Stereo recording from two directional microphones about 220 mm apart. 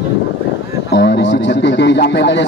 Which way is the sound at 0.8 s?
50° left (ahead or behind).